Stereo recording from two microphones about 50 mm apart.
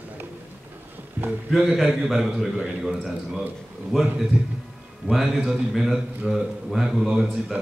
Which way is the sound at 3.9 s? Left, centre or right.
Centre.